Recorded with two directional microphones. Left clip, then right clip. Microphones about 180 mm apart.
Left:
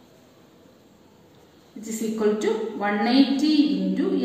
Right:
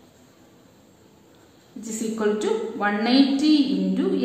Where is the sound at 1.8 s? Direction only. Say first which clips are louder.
Left 1 dB; 35° right (ahead or behind).